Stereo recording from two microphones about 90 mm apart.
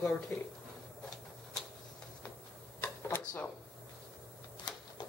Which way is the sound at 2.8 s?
25° left (ahead or behind).